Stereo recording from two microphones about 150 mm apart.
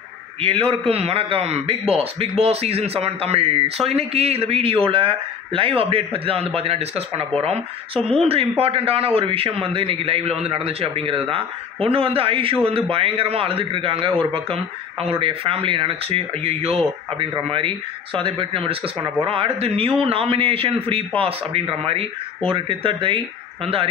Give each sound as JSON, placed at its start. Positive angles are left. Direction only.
{"t": 0.4, "sound": "a man's voice", "side_deg": -40}